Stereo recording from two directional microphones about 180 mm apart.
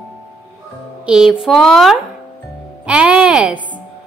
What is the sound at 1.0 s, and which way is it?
A woman's voice, 5° right (ahead or behind).